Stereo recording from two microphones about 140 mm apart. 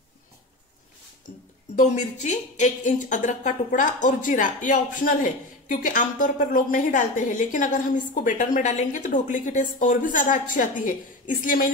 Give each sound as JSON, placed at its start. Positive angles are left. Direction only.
{"t": 1.8, "sound": "speech", "side_deg": 60}